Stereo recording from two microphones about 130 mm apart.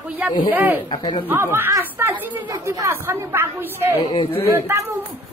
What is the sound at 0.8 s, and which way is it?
Speech, 35° left (ahead or behind).